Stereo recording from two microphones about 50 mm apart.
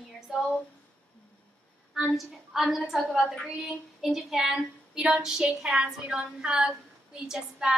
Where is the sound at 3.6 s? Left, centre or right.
Centre.